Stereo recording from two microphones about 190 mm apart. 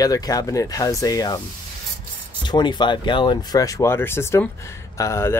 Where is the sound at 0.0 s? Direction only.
20° left (ahead or behind).